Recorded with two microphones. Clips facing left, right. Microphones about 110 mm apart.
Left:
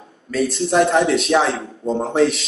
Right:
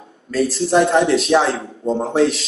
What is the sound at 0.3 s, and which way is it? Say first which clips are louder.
Speech: right 2 dB; centre (ahead or behind).